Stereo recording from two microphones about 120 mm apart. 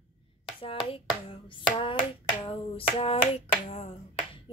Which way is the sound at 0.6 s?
50° left (ahead or behind).